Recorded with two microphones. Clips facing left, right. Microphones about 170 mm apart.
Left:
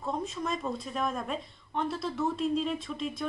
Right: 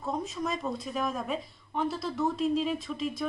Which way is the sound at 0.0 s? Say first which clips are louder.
Right 1 dB; centre (ahead or behind).